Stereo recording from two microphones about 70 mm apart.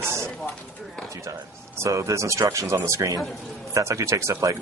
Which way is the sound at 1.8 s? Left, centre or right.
Right.